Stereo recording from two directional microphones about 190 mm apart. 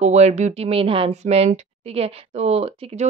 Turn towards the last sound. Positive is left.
turn(degrees=-35)  # may be behind; listen again after turning